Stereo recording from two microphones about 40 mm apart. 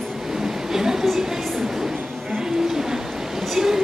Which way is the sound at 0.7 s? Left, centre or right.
Centre.